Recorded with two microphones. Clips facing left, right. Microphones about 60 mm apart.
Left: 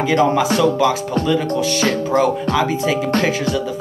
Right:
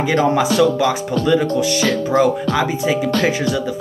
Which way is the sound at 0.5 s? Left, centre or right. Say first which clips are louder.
Even; left.